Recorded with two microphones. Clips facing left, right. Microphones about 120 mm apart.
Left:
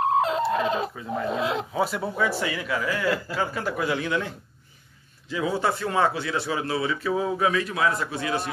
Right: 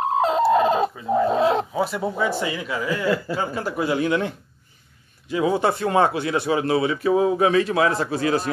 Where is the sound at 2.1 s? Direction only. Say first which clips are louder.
Even; 20° right (ahead or behind).